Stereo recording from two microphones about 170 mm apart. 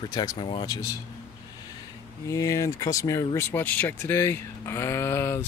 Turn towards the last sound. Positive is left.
turn(degrees=15)  # may be behind; listen again after turning